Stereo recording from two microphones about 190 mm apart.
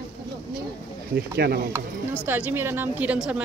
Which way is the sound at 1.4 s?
55° right (ahead or behind).